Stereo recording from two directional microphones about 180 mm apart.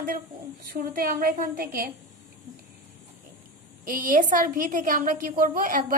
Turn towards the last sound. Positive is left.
turn(degrees=-50)  # may be behind; listen again after turning